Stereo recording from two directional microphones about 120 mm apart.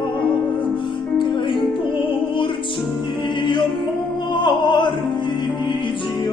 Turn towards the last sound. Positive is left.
turn(degrees=40)  # may be behind; listen again after turning